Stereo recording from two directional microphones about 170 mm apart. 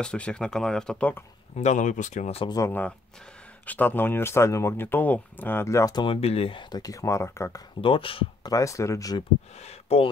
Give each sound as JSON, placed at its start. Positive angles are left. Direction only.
{"t": 0.0, "sound": "speech", "side_deg": 5}
{"t": 1.6, "sound": "speech", "side_deg": 45}
{"t": 2.5, "sound": "speech", "side_deg": 15}
{"t": 7.8, "sound": "speech", "side_deg": 30}
{"t": 8.5, "sound": "speech", "side_deg": 20}
{"t": 9.6, "sound": "speech", "side_deg": 35}